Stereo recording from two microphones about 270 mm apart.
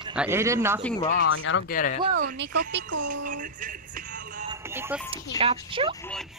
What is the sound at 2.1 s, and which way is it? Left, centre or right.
Speech, right.